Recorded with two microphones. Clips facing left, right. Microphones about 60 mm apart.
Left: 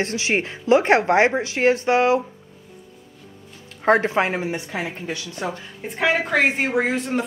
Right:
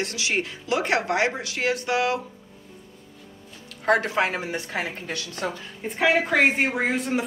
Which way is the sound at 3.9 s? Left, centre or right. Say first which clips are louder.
Left 4 dB; left.